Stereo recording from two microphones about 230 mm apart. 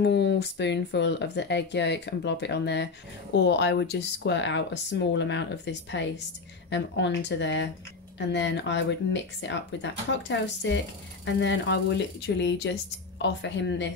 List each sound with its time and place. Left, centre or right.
0.0 s speech: left